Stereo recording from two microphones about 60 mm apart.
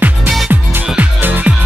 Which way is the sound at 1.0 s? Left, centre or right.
Right.